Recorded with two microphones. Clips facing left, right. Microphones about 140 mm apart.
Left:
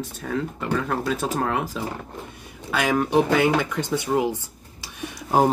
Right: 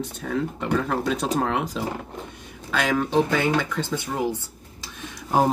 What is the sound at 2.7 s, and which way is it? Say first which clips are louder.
Speech: left 2 dB; 10° left (ahead or behind).